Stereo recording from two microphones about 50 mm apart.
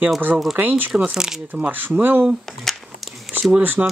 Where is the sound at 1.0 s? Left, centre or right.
Centre.